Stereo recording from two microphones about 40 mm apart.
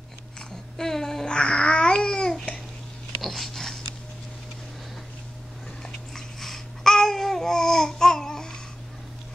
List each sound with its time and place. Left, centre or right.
0.7 s child singing: centre
1.2 s babbling: left
3.2 s a sound: centre
5.8 s babbling: centre